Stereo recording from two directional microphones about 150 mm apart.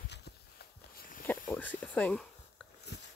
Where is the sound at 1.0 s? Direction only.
65° left (ahead or behind).